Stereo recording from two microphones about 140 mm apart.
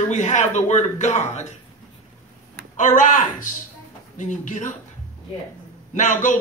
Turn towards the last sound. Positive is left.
turn(degrees=65)  # may be behind; listen again after turning